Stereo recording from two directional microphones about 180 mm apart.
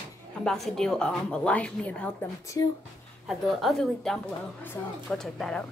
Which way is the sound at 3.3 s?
Centre (ahead or behind).